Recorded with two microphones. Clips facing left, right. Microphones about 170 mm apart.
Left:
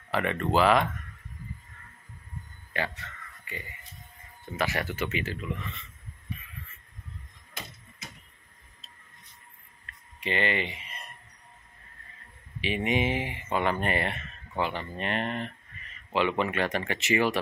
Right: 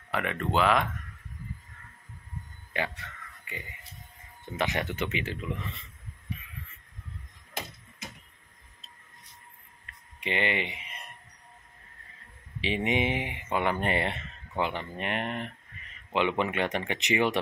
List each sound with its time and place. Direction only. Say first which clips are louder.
0.1 s speech: left 3 dB; centre (ahead or behind)
2.7 s a man's voice: even; 15° right (ahead or behind)
10.2 s speech: left 1 dB; 15° right (ahead or behind)
12.5 s speech: even; 25° right (ahead or behind)